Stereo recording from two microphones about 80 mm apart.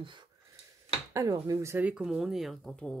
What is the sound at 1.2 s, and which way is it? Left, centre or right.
Speech, right.